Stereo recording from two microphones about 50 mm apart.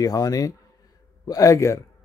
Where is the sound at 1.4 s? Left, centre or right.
Left.